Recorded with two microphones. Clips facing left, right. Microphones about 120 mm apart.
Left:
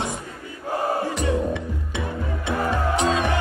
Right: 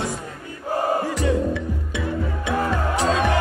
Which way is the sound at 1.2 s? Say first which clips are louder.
Right 2 dB; 20° left (ahead or behind).